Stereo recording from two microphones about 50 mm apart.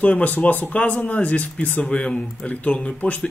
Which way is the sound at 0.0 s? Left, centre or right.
Left.